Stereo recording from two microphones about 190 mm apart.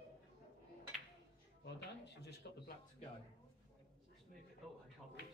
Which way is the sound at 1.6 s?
65° left (ahead or behind).